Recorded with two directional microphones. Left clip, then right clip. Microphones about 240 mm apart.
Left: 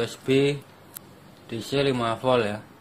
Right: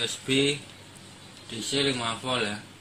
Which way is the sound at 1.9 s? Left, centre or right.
Left.